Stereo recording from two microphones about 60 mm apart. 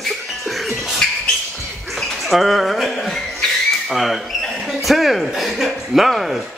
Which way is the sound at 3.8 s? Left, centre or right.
Centre.